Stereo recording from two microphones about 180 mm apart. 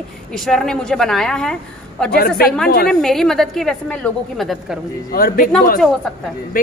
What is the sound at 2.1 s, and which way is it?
Speech, 55° left (ahead or behind).